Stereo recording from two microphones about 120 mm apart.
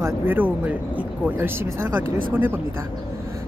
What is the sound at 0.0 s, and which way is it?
Speech, 15° right (ahead or behind).